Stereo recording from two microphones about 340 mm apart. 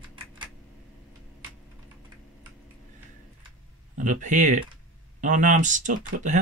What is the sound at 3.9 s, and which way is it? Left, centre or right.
Speech, right.